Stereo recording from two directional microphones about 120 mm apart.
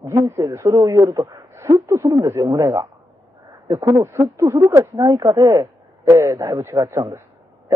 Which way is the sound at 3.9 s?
20° right (ahead or behind).